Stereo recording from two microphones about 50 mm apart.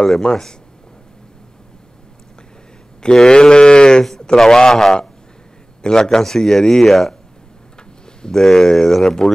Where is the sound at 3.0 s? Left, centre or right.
Centre.